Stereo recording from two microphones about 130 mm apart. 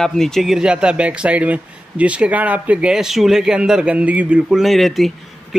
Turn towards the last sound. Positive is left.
turn(degrees=0)  # may be behind; listen again after turning